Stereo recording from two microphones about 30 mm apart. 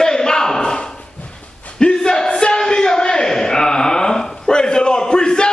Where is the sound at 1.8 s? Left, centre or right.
Left.